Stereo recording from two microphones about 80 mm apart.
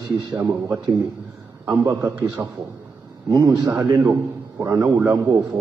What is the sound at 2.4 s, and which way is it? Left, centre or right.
Speech, right.